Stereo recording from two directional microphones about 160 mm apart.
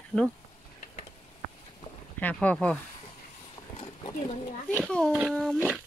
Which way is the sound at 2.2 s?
10° left (ahead or behind).